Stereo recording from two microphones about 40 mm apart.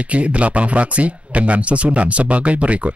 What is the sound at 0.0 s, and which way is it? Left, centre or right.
Speech, right.